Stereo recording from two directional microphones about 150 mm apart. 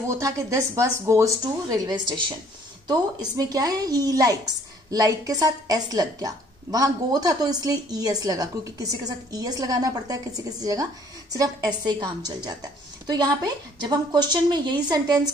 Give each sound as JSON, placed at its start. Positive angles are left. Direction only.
{"t": 0.2, "sound": "a woman's voice", "side_deg": -20}